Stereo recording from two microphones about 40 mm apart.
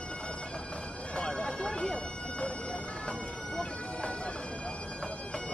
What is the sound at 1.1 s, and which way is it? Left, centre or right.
Bagpipes, left.